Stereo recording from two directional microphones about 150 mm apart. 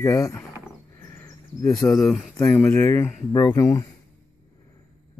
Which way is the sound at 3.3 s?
30° left (ahead or behind).